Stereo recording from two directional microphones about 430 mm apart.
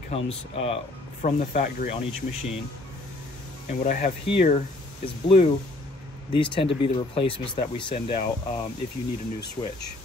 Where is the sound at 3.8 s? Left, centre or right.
Centre.